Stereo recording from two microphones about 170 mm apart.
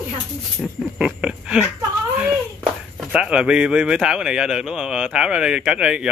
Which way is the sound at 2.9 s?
5° right (ahead or behind).